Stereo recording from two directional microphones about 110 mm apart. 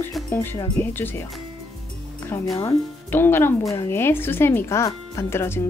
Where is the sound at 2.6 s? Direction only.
20° left (ahead or behind).